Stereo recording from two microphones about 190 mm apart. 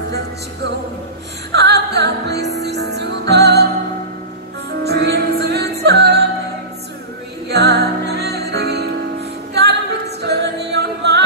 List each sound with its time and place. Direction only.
1.5 s music: 60° right (ahead or behind)
4.8 s music: 60° right (ahead or behind)
7.4 s music: 60° right (ahead or behind)